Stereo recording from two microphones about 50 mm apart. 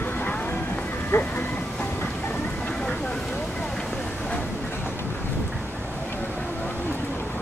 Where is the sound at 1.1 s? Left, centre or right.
Left.